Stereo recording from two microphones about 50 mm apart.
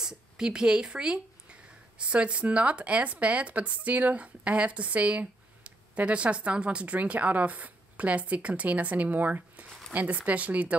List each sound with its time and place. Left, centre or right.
0.0 s speech: centre; by 10.8 s right